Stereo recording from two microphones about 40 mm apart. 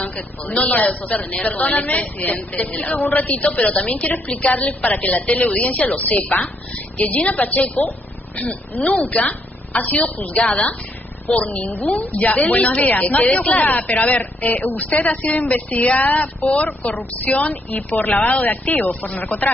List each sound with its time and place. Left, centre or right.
0.0 s a woman's voice: left